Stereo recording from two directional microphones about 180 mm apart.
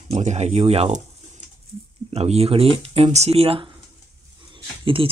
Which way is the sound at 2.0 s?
35° right (ahead or behind).